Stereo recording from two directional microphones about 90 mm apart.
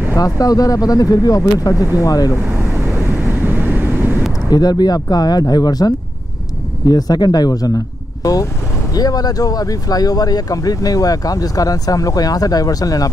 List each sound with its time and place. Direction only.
0.1 s speech: 40° left (ahead or behind)
2.9 s vehicle: 20° right (ahead or behind)
4.5 s speech: 45° left (ahead or behind)